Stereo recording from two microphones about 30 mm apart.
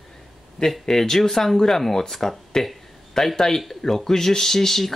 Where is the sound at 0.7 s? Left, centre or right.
Centre.